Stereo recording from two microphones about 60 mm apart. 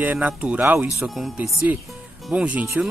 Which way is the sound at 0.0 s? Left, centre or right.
Right.